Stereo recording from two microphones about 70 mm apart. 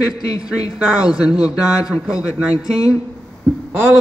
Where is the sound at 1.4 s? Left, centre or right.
Left.